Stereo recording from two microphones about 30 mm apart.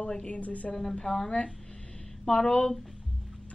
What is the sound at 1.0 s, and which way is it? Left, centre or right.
Speech, centre.